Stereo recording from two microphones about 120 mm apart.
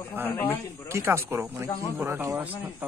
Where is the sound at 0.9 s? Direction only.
20° right (ahead or behind).